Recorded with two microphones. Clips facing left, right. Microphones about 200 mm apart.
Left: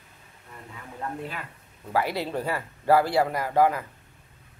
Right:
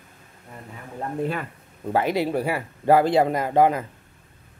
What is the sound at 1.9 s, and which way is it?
Speech, 20° right (ahead or behind).